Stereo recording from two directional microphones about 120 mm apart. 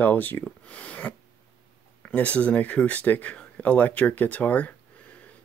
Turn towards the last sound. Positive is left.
turn(degrees=10)  # may be behind; listen again after turning